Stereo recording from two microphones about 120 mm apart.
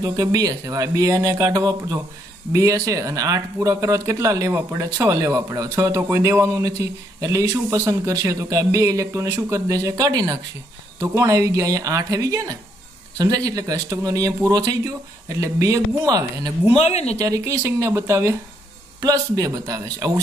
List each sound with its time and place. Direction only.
0.0 s speech: 30° right (ahead or behind)
16.7 s speech: 60° left (ahead or behind)
17.2 s speech: 25° right (ahead or behind)